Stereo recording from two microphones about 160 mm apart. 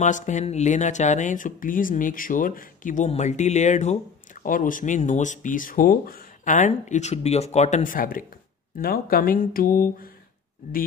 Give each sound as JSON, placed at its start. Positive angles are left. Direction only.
{"t": 0.0, "sound": "speech", "side_deg": 50}